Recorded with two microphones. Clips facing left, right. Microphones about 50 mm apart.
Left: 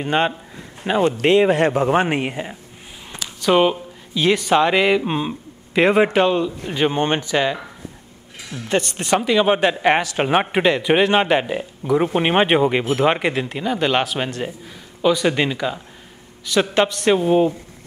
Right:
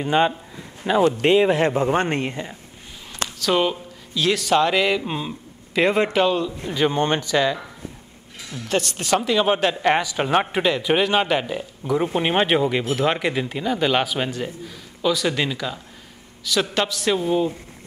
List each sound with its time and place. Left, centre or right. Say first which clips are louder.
0.0 s speech: even; centre
1.2 s speech: left 2 dB; centre
6.6 s speech: left 1 dB; left
8.4 s mechanisms: left 2 dB; centre
9.0 s speech: left 3 dB; centre
15.0 s speech: left 4 dB; centre